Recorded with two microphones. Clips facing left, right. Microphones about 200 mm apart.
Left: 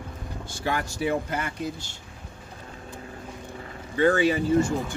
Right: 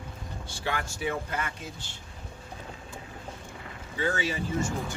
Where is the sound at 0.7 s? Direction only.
40° left (ahead or behind).